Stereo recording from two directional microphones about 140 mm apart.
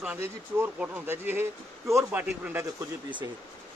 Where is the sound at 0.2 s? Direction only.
15° right (ahead or behind).